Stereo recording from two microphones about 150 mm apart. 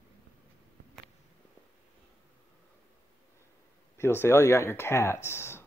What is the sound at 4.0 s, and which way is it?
Speech, 15° left (ahead or behind).